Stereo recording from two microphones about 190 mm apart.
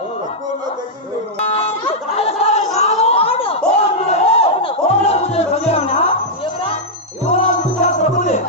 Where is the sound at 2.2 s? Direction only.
35° left (ahead or behind).